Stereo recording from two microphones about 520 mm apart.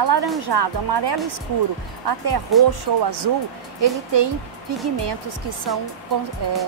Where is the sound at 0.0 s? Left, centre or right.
Right.